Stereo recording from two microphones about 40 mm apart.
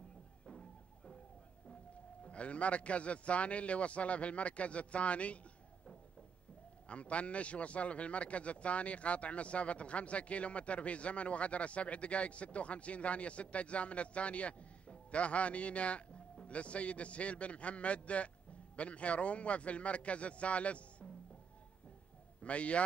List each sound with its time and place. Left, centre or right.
0.5 s music: left
2.2 s a man's voice: left
6.9 s a man's voice: left
22.4 s a man's voice: left